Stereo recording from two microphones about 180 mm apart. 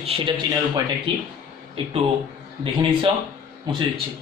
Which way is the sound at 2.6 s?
30° right (ahead or behind).